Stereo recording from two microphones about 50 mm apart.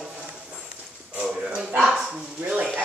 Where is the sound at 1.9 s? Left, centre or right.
Centre.